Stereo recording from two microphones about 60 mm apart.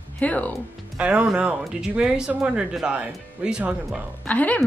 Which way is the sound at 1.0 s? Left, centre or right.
Centre.